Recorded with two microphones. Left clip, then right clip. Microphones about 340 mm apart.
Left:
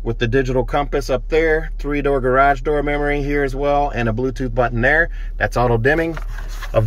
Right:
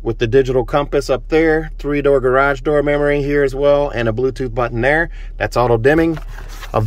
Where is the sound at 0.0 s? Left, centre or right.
Centre.